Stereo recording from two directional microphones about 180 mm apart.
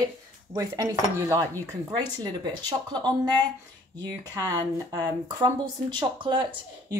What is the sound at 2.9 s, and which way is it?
A woman's voice, 25° right (ahead or behind).